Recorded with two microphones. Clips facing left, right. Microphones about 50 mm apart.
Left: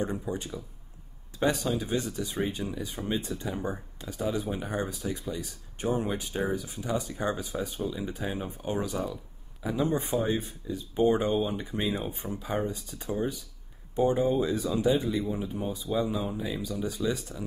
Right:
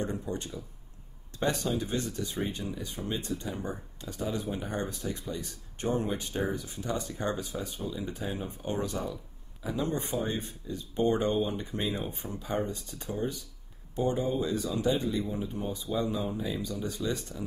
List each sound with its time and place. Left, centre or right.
0.0 s speech: centre
8.5 s speech: centre